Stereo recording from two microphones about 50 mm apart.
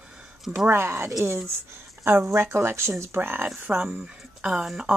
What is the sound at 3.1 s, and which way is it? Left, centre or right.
Speech, right.